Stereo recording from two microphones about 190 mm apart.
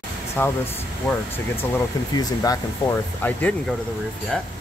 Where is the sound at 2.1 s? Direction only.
20° left (ahead or behind).